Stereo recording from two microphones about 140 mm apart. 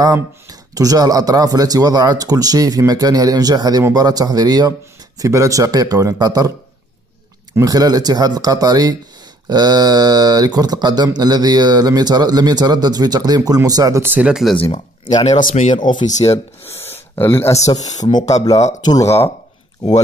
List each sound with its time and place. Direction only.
0.0 s speech: 25° right (ahead or behind)
7.5 s speech: 25° right (ahead or behind)
14.0 s speech: 10° right (ahead or behind)
15.1 s speech: 60° left (ahead or behind)
15.7 s speech: 35° left (ahead or behind)
16.2 s speech: 20° left (ahead or behind)